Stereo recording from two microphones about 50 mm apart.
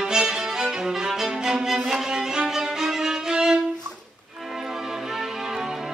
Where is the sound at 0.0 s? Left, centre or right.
Centre.